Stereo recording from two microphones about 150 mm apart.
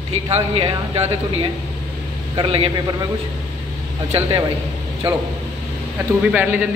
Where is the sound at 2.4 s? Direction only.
40° right (ahead or behind).